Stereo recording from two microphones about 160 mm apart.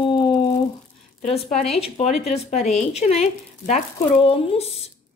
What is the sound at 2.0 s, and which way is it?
Speech, 45° left (ahead or behind).